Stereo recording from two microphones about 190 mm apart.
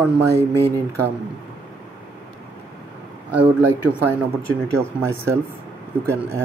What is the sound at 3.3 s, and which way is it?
Speech, 10° right (ahead or behind).